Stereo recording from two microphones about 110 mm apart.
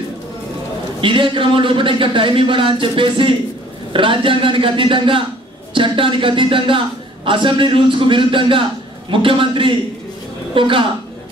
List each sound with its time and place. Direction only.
1.0 s a man's voice: 50° right (ahead or behind)